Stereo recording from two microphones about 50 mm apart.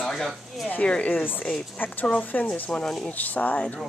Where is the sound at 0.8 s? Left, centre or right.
Left.